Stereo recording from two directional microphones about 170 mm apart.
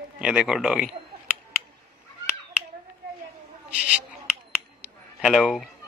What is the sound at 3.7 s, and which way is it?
Speech, 5° right (ahead or behind).